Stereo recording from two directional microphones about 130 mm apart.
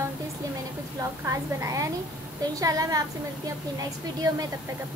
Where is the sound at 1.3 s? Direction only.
25° right (ahead or behind).